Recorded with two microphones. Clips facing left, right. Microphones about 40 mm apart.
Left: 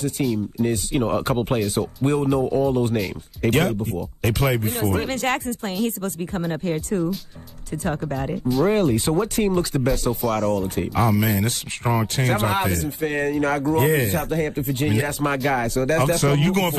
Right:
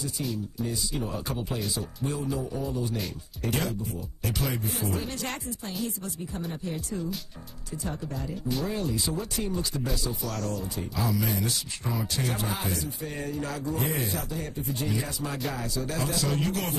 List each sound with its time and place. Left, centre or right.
0.6 s speech: left
10.6 s speech: left